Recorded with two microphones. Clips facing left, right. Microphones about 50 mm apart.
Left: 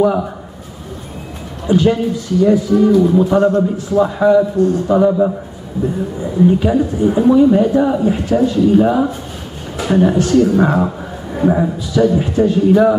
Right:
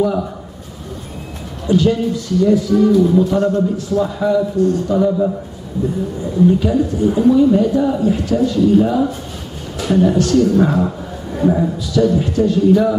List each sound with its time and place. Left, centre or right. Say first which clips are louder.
0.0 s a woman's voice: left 3 dB; centre
1.7 s a man's voice: left 1 dB; centre
4.0 s a woman's voice: left 6 dB; left
6.4 s a woman's voice: left 1 dB; left